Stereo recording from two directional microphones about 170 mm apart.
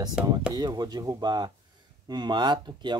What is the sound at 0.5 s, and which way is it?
Speech, 25° right (ahead or behind).